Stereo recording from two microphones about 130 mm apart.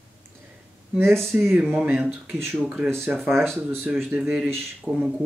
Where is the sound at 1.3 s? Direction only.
15° right (ahead or behind).